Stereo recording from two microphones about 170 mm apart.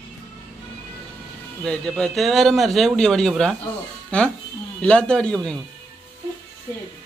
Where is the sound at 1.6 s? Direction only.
5° left (ahead or behind).